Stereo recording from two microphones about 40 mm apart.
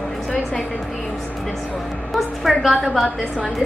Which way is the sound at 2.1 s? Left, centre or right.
Centre.